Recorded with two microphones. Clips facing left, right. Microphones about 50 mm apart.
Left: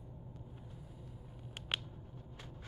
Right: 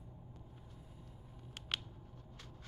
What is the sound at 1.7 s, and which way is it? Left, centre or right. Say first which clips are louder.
Scissors: left 2 dB; centre.